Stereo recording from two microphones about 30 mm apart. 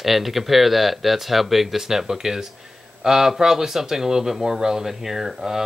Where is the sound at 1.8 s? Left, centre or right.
Centre.